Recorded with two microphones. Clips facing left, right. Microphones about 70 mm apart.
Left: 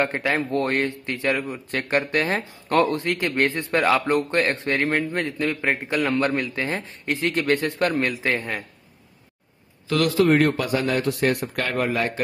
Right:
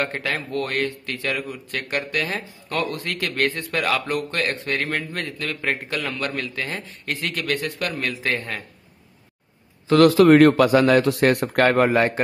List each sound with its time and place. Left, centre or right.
0.0 s a man's voice: left
10.1 s a man's voice: right